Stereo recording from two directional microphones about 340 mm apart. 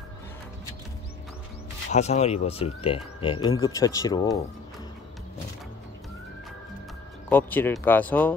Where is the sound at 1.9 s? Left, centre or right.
Centre.